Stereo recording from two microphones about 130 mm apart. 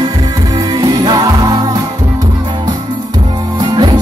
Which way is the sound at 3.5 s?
35° right (ahead or behind).